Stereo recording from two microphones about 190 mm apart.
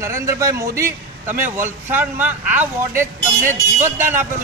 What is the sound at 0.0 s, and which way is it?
A man's voice, 15° right (ahead or behind).